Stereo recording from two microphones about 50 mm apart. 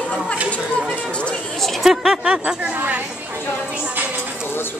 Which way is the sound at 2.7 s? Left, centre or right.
Right.